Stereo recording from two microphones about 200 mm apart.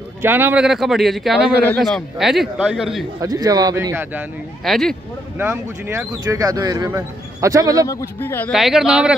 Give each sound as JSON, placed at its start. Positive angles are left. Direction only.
{"t": 0.2, "sound": "speech", "side_deg": -10}
{"t": 3.2, "sound": "speech", "side_deg": -20}
{"t": 4.6, "sound": "speech", "side_deg": 0}
{"t": 5.4, "sound": "speech", "side_deg": -15}
{"t": 7.8, "sound": "speech", "side_deg": 15}
{"t": 8.5, "sound": "speech", "side_deg": 0}